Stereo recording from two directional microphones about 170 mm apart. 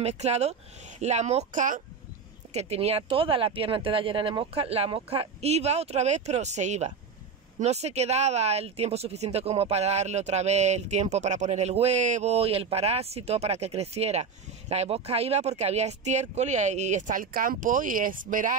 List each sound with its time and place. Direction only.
0.0 s speech: 40° right (ahead or behind)
2.5 s speech: 35° right (ahead or behind); by 18.6 s 50° right (ahead or behind)